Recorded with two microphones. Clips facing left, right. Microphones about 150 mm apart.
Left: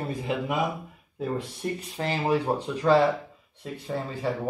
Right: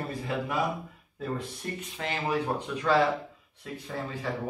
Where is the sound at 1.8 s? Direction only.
35° left (ahead or behind).